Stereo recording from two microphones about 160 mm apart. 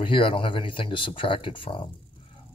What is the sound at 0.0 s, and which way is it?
Speech, 35° left (ahead or behind).